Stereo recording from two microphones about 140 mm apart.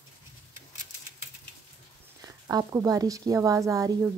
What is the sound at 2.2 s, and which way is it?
Speech, 30° right (ahead or behind).